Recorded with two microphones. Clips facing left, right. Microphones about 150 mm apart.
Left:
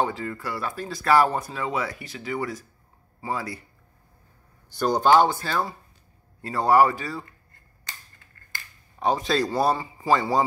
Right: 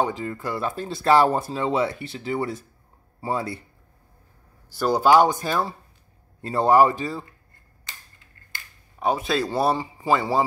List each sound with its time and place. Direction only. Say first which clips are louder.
0.0 s speech: right 2 dB; 20° right (ahead or behind)
4.6 s speech: right 1 dB; 5° right (ahead or behind); by 7.2 s 25° right (ahead or behind)
9.0 s speech: even; 5° right (ahead or behind)